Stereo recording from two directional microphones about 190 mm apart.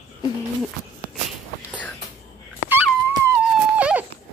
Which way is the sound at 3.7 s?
5° right (ahead or behind).